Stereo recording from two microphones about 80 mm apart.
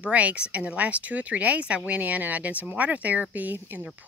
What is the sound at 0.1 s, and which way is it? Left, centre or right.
Speech, centre.